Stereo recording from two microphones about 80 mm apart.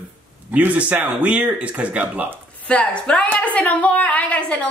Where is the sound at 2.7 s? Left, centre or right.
Centre.